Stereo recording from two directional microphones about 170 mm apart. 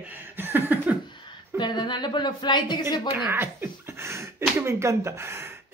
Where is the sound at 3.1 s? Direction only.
10° right (ahead or behind).